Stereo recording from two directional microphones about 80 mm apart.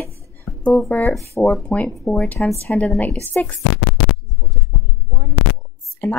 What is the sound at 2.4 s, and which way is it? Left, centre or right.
A woman's voice, centre.